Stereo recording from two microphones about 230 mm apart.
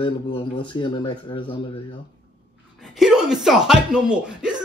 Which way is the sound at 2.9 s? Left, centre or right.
Centre.